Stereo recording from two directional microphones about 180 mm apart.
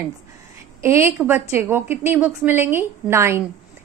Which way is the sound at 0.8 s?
15° right (ahead or behind).